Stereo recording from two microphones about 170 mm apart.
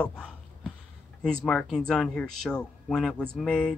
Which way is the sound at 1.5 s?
5° left (ahead or behind).